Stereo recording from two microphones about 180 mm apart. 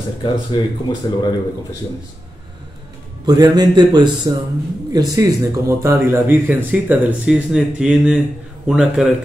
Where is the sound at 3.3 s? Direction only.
20° right (ahead or behind).